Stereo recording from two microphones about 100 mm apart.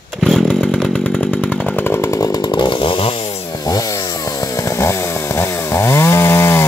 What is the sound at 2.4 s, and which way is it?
Chainsaw, 50° left (ahead or behind).